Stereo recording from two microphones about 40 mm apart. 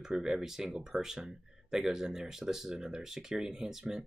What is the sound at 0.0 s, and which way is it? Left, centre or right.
Speech, centre.